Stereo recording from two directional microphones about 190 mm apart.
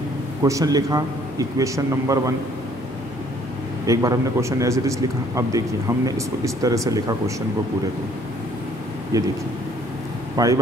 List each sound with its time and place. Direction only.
0.4 s a man's voice: 15° right (ahead or behind)
3.8 s a man's voice: 15° right (ahead or behind)
9.1 s a man's voice: 20° right (ahead or behind)
10.3 s speech: 20° right (ahead or behind)